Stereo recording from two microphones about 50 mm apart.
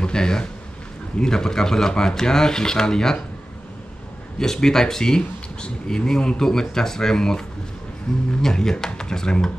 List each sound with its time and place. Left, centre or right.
0.0 s a sound: centre
1.2 s speech: centre
4.4 s speech: centre